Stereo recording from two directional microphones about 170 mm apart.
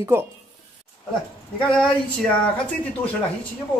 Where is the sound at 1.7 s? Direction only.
5° left (ahead or behind).